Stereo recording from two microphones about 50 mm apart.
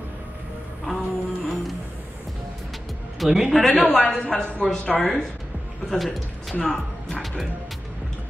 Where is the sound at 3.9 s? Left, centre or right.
Centre.